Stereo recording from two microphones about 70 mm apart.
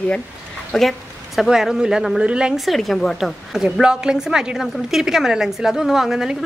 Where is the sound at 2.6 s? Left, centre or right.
Centre.